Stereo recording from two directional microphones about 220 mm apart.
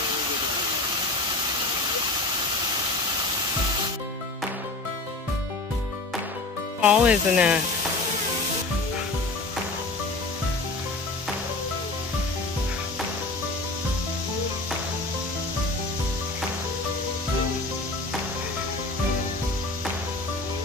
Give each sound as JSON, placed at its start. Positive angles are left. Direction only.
{"t": 6.8, "sound": "speech", "side_deg": -5}